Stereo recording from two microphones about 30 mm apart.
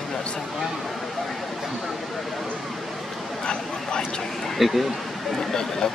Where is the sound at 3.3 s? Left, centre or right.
Left.